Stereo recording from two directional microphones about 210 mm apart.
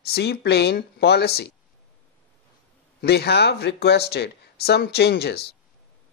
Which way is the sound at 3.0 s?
50° left (ahead or behind).